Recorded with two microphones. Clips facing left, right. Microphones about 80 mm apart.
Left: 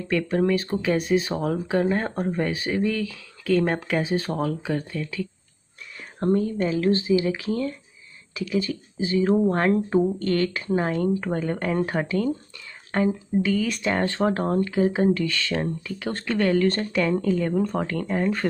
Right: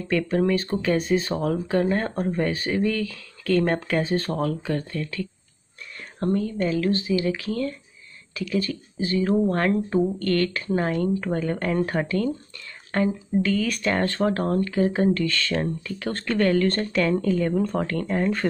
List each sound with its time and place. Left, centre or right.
0.3 s speech: centre
6.1 s speech: centre